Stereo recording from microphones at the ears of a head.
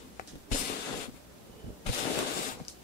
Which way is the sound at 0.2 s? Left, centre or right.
Left.